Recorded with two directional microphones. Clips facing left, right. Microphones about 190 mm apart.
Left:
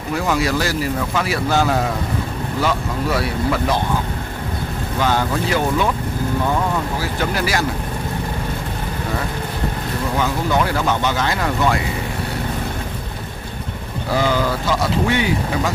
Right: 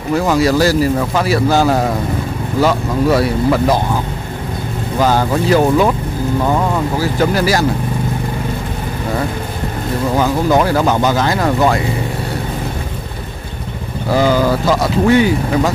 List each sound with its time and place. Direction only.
0.3 s speech: 35° right (ahead or behind)
5.0 s speech: 40° right (ahead or behind)
7.0 s speech: 40° right (ahead or behind)
10.1 s speech: 40° right (ahead or behind)
14.1 s speech: 40° right (ahead or behind)